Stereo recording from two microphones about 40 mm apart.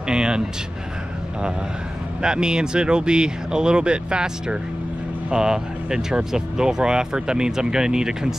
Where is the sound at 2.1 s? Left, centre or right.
Centre.